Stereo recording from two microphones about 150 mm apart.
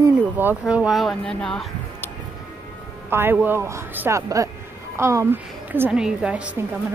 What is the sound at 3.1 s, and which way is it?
Speech, 15° right (ahead or behind).